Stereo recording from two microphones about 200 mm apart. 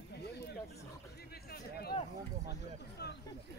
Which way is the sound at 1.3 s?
50° left (ahead or behind).